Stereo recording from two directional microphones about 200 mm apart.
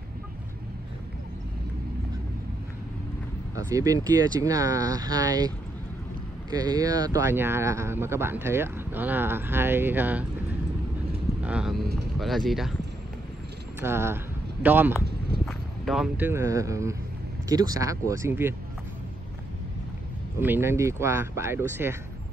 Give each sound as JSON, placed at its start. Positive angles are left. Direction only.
{"t": 3.5, "sound": "speech", "side_deg": -15}
{"t": 6.5, "sound": "speech", "side_deg": -20}
{"t": 11.4, "sound": "speech", "side_deg": -5}
{"t": 13.7, "sound": "speech", "side_deg": -10}
{"t": 20.3, "sound": "speech", "side_deg": -10}